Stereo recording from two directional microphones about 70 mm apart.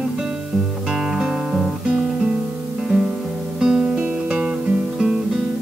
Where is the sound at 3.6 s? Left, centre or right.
Centre.